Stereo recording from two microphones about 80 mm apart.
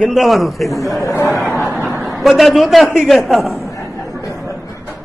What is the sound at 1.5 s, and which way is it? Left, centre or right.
A man's voice, centre.